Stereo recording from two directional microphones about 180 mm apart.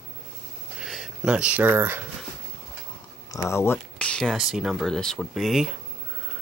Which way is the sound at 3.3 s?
15° left (ahead or behind).